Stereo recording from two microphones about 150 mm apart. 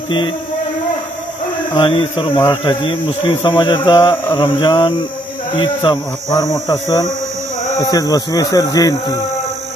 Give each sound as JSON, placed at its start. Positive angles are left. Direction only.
{"t": 1.7, "sound": "a man's voice", "side_deg": 35}